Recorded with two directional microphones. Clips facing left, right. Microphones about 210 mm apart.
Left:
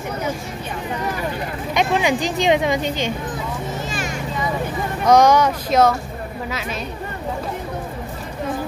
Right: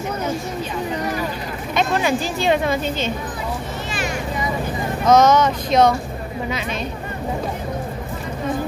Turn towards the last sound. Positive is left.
turn(degrees=5)  # may be behind; listen again after turning